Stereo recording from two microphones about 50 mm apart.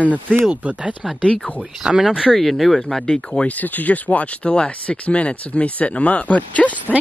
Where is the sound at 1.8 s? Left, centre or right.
Centre.